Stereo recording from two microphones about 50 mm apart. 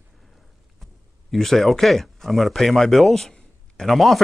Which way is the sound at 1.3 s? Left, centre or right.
Centre.